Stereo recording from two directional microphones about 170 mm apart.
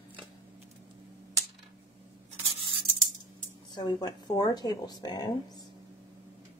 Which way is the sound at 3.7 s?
25° left (ahead or behind).